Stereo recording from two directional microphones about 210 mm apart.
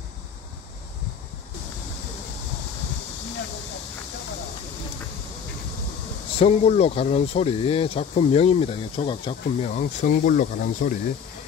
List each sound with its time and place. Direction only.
6.4 s speech: 30° left (ahead or behind)